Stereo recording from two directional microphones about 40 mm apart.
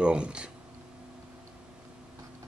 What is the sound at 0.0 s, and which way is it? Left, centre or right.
Speech, right.